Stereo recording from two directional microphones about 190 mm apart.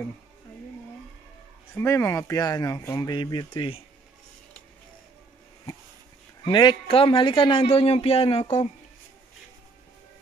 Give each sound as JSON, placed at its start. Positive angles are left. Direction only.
{"t": 1.8, "sound": "a man's voice", "side_deg": 15}
{"t": 6.4, "sound": "a man's voice", "side_deg": 25}